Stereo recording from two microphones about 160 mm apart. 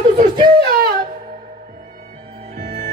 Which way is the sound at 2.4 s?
50° right (ahead or behind).